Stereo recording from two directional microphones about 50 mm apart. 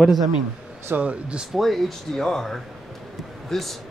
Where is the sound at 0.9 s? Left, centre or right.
Right.